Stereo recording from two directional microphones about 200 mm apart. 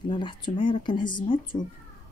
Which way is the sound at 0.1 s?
25° left (ahead or behind).